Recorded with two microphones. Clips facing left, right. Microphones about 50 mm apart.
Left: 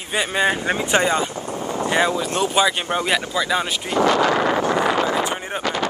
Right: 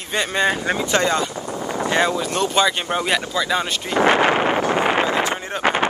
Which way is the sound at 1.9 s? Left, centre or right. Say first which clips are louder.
Even; centre.